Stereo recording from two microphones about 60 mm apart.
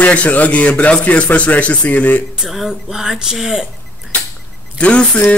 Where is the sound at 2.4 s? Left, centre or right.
Centre.